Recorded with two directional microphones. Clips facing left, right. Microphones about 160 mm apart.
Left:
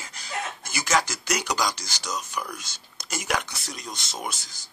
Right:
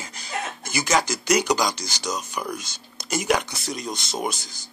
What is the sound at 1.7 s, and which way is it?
Speech, 5° left (ahead or behind).